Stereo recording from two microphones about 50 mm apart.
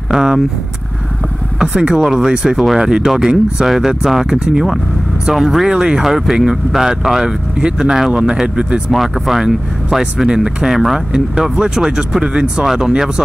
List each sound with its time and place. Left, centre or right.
0.1 s speech: centre
1.6 s speech: centre
8.9 s speech: centre